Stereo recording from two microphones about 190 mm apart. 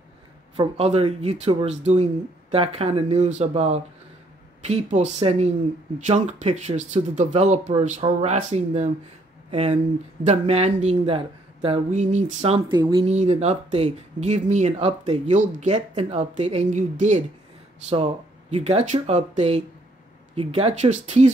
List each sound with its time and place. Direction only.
0.6 s speech: 30° right (ahead or behind)
13.1 s speech: 35° right (ahead or behind)